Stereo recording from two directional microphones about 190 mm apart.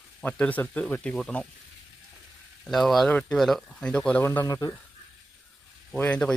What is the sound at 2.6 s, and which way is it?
Speech, centre (ahead or behind).